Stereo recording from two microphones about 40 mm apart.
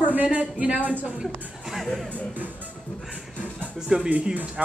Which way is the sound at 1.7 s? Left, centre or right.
Centre.